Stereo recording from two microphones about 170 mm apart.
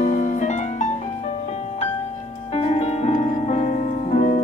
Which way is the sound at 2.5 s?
35° left (ahead or behind).